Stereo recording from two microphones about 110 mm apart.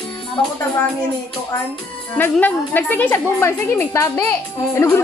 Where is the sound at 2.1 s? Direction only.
15° left (ahead or behind).